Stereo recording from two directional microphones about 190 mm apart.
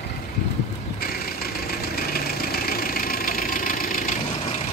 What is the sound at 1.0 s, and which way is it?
Engine, 55° left (ahead or behind).